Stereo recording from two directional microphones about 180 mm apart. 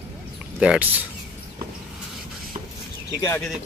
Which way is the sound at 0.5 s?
5° right (ahead or behind).